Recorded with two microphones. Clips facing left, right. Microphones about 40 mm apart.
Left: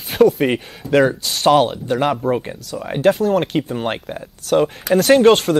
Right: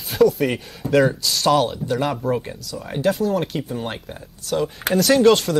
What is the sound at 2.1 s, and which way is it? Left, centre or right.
Speech, left.